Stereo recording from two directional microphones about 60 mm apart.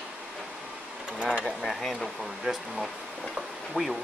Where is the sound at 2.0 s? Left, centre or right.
Centre.